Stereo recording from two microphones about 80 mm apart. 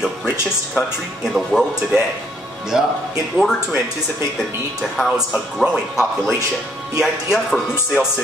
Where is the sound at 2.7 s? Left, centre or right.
Centre.